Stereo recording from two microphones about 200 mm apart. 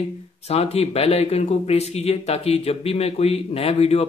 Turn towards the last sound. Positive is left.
turn(degrees=30)  # may be behind; listen again after turning